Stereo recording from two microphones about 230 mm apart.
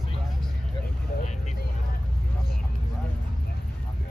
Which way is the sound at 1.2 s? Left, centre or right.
Left.